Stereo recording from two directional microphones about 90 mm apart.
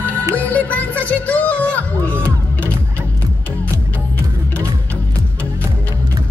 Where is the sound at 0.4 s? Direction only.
15° left (ahead or behind).